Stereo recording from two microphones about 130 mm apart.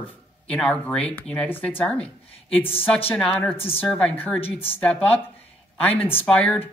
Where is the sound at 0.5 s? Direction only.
10° left (ahead or behind).